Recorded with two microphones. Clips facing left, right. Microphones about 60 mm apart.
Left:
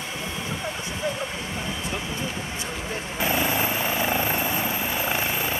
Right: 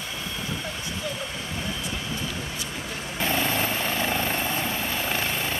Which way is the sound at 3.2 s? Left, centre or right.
Centre.